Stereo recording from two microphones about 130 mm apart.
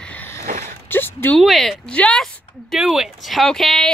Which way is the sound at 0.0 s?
10° left (ahead or behind).